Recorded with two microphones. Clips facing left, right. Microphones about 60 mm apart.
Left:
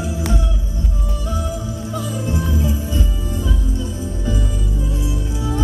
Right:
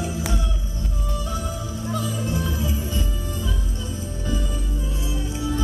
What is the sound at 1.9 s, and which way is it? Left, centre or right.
Music, left.